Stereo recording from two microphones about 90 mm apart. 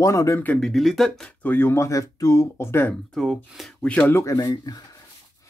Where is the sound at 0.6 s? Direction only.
5° left (ahead or behind).